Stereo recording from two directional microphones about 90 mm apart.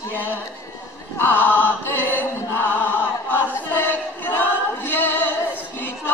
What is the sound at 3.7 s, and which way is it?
Choir, 20° left (ahead or behind).